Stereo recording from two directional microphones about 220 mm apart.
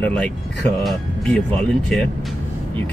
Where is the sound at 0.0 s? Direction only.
5° left (ahead or behind).